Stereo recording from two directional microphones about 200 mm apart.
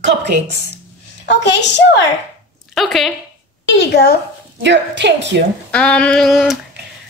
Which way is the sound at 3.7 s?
55° left (ahead or behind).